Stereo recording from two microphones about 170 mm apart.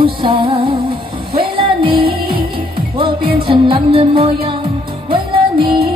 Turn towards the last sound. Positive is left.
turn(degrees=-30)  # may be behind; listen again after turning